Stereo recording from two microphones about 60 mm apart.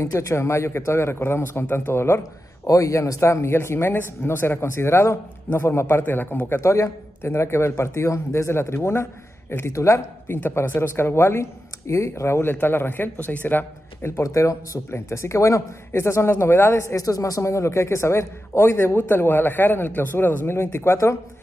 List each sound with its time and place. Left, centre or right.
0.0 s a man's voice: left
2.6 s a man's voice: left
6.6 s a man's voice: left
9.7 s a man's voice: left
14.1 s a man's voice: left
16.9 s a man's voice: left